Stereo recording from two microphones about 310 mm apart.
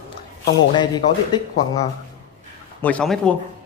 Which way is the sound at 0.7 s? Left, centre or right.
Centre.